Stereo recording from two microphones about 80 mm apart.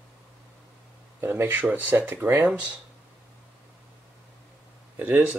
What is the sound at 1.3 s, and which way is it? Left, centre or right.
Speech, right.